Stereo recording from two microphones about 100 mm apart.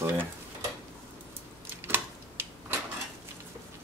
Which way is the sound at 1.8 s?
25° right (ahead or behind).